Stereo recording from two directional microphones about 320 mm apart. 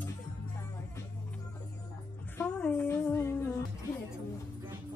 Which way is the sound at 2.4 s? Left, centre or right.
Centre.